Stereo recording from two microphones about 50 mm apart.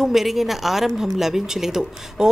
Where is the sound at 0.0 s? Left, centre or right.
Centre.